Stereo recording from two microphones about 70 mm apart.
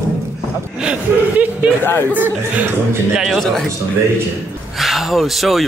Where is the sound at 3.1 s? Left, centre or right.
Centre.